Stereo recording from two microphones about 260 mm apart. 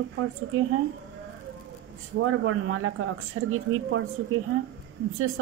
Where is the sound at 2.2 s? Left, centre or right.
Right.